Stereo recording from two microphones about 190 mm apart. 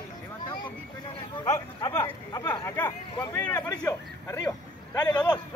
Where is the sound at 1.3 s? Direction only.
25° left (ahead or behind).